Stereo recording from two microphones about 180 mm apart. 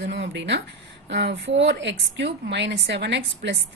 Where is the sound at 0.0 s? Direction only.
75° right (ahead or behind).